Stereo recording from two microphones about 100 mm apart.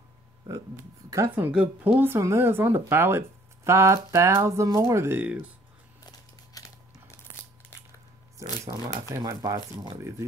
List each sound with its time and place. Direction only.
0.5 s speech: 30° right (ahead or behind)
1.3 s speech: 15° right (ahead or behind)
6.6 s a sound: 35° left (ahead or behind)
8.4 s speech: 30° right (ahead or behind)